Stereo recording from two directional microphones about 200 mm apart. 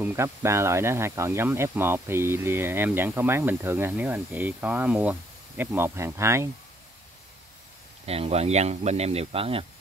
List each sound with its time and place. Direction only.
0.0 s speech: 10° right (ahead or behind)
8.0 s speech: 30° right (ahead or behind)